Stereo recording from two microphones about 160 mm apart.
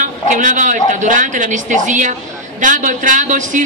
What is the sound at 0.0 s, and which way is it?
A woman's voice, 50° right (ahead or behind).